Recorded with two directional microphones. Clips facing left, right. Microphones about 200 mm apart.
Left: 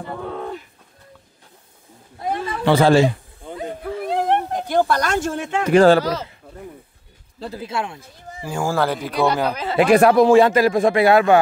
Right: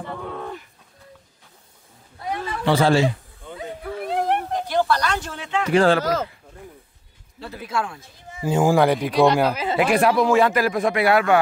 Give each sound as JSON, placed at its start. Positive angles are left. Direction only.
{"t": 2.2, "sound": "a sound", "side_deg": 55}
{"t": 3.5, "sound": "a sound", "side_deg": 35}
{"t": 4.6, "sound": "speech", "side_deg": 50}
{"t": 7.3, "sound": "speech", "side_deg": 30}
{"t": 8.5, "sound": "speech", "side_deg": -20}
{"t": 9.1, "sound": "speech", "side_deg": 0}
{"t": 9.8, "sound": "speech", "side_deg": 40}
{"t": 10.2, "sound": "a man's voice", "side_deg": 30}